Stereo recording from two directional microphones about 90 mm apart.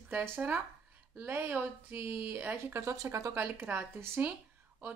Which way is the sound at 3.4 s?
20° right (ahead or behind).